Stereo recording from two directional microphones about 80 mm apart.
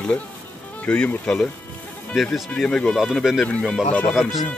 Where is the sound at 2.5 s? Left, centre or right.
Centre.